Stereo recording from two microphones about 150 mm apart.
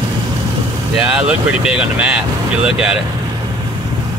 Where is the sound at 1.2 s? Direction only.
5° right (ahead or behind).